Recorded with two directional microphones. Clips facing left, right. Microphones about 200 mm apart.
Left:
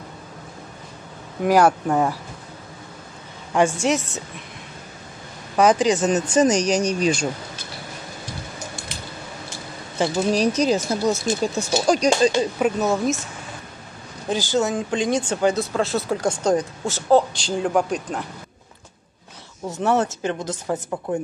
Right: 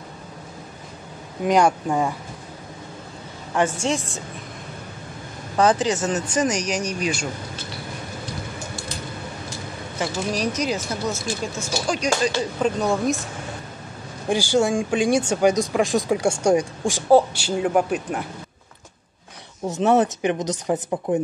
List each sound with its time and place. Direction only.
1.4 s a woman's voice: 5° left (ahead or behind)
3.5 s a woman's voice: 10° left (ahead or behind)
5.6 s a woman's voice: 15° left (ahead or behind); by 7.2 s 30° left (ahead or behind)
9.9 s speech: 30° left (ahead or behind)
12.3 s a woman's voice: 15° left (ahead or behind)
14.3 s speech: 10° right (ahead or behind)
19.7 s speech: 20° right (ahead or behind)